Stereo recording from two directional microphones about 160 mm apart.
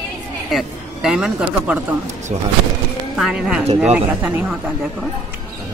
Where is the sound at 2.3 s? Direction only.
45° right (ahead or behind).